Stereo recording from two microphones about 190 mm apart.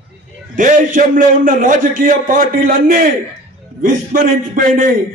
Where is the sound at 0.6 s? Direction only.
45° right (ahead or behind).